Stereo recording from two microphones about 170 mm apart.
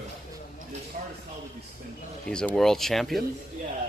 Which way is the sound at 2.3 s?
5° left (ahead or behind).